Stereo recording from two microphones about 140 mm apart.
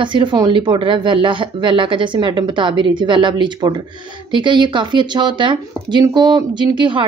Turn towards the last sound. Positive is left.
turn(degrees=-35)  # may be behind; listen again after turning